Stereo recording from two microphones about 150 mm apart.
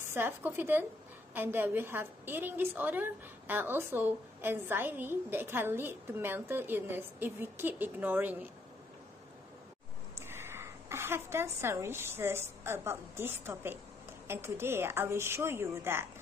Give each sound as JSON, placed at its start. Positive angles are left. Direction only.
{"t": 0.0, "sound": "a woman's voice", "side_deg": -15}
{"t": 10.1, "sound": "a woman's voice", "side_deg": -15}